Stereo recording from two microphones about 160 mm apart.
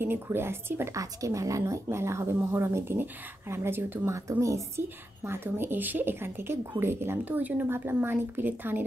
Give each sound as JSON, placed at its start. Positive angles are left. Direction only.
{"t": 0.0, "sound": "a woman's voice", "side_deg": -15}